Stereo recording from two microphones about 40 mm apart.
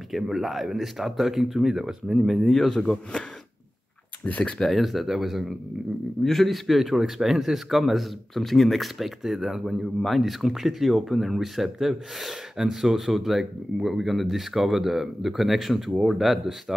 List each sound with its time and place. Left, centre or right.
0.1 s a man's voice: centre
2.4 s a man's voice: centre
4.3 s speech: left
4.6 s a man's voice: centre